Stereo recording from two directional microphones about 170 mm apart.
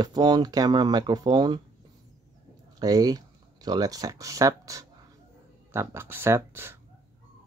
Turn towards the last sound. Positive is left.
turn(degrees=-15)  # may be behind; listen again after turning